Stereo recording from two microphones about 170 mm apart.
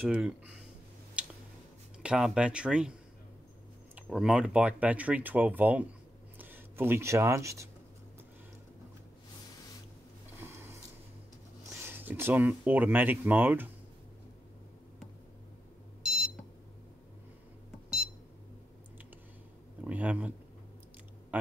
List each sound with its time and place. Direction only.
0.0 s speech: 5° right (ahead or behind)
1.2 s tick-tock: 5° right (ahead or behind)
2.0 s speech: 5° right (ahead or behind)
3.9 s speech: 5° right (ahead or behind)
10.4 s a sound: 15° right (ahead or behind)
11.8 s speech: 10° right (ahead or behind)
16.0 s beep: 5° right (ahead or behind)
17.8 s beep: 5° right (ahead or behind)
19.8 s speech: 10° right (ahead or behind)